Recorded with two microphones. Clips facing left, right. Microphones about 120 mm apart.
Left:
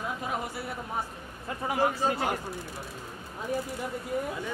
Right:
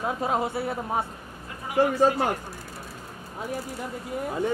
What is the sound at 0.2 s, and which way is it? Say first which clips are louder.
Speech: right 7 dB; 25° right (ahead or behind).